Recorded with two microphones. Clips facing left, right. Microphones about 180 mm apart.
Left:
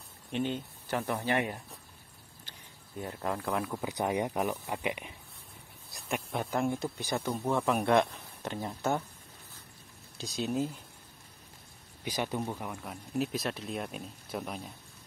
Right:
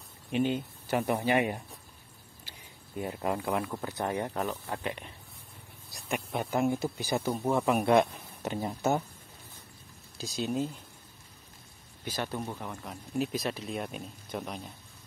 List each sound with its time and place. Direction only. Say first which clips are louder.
0.3 s speech: right 4 dB; 10° right (ahead or behind)
2.5 s a sound: right 2 dB; 10° right (ahead or behind)
3.0 s speech: right 3 dB; 10° right (ahead or behind)
3.8 s speech: left 1 dB; 15° left (ahead or behind)
5.9 s speech: right 1 dB; centre (ahead or behind)
10.1 s speech: right 1 dB; centre (ahead or behind)
12.0 s speech: left 1 dB; 15° left (ahead or behind)